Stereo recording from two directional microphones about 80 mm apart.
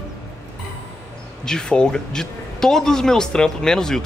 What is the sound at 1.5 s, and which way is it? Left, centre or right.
Speech, centre.